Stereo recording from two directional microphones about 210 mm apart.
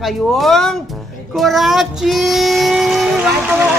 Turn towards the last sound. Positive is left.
turn(degrees=0)  # may be behind; listen again after turning